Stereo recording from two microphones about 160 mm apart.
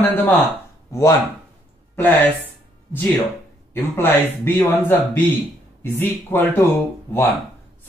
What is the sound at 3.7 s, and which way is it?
Speech, 15° left (ahead or behind).